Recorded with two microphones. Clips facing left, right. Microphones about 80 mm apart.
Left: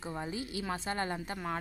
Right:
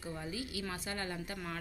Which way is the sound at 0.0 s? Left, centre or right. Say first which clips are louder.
Left 3 dB; left.